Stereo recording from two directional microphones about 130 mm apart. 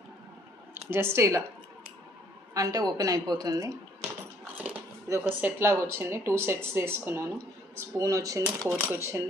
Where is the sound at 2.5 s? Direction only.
25° right (ahead or behind).